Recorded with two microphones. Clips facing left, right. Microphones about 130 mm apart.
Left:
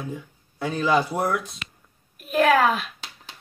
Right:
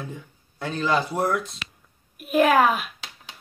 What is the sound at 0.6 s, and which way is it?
Speech, 10° left (ahead or behind).